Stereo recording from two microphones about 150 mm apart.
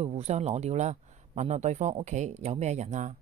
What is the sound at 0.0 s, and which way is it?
Speech, 45° right (ahead or behind).